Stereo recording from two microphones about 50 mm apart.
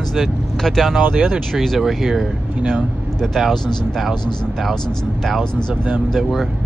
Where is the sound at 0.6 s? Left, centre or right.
Centre.